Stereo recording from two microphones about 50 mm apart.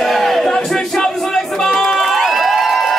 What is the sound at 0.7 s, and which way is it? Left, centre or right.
Crowd, centre.